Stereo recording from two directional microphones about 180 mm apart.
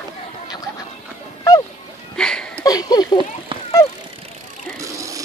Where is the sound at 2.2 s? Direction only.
5° left (ahead or behind).